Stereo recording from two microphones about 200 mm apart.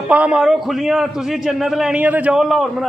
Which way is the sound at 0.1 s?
5° right (ahead or behind).